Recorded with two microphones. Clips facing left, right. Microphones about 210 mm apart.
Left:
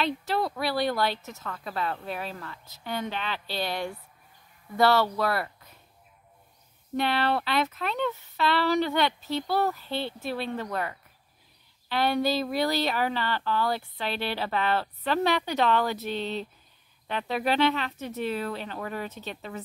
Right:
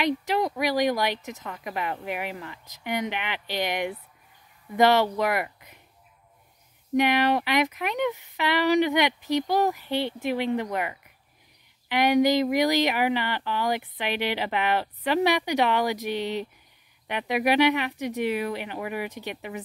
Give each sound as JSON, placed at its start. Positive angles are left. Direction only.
{"t": 0.0, "sound": "speech", "side_deg": -15}
{"t": 7.0, "sound": "speech", "side_deg": -15}